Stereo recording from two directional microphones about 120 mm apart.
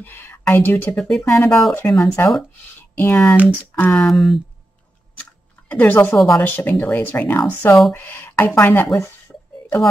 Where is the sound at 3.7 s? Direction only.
15° left (ahead or behind).